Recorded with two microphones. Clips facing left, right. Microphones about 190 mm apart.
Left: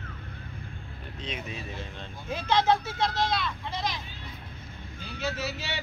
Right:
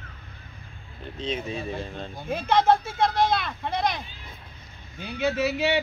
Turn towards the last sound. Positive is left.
turn(degrees=-60)  # may be behind; listen again after turning